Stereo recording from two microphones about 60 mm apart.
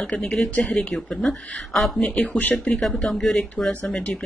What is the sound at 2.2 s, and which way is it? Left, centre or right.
Speech, left.